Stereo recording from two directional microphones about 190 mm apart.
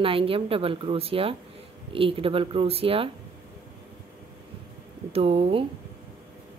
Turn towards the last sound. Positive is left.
turn(degrees=-30)  # may be behind; listen again after turning